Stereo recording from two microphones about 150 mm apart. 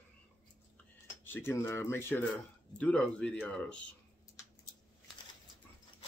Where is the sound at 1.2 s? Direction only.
15° left (ahead or behind).